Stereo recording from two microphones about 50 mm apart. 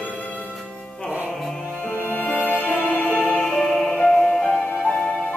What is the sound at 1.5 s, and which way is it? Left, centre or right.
Music, centre.